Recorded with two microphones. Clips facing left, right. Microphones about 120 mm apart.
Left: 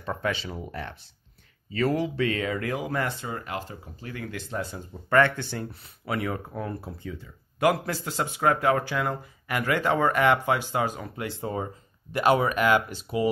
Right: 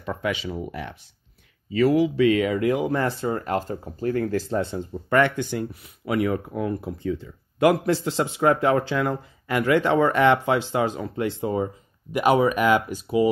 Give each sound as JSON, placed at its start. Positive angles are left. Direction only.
{"t": 0.2, "sound": "speech", "side_deg": -15}